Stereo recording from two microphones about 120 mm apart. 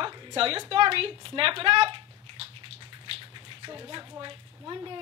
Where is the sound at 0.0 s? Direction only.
45° right (ahead or behind).